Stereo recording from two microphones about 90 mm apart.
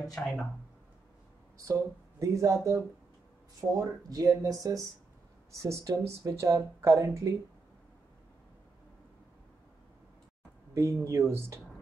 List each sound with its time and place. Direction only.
0.1 s speech: 10° left (ahead or behind)
1.6 s speech: 35° right (ahead or behind)
10.7 s speech: 35° right (ahead or behind)